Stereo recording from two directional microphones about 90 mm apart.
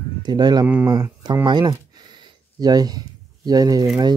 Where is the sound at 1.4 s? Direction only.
55° right (ahead or behind).